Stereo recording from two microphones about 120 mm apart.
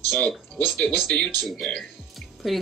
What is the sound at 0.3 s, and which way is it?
A woman's voice, 5° left (ahead or behind).